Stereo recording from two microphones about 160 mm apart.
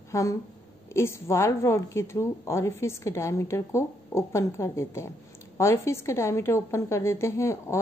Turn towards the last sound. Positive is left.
turn(degrees=15)  # may be behind; listen again after turning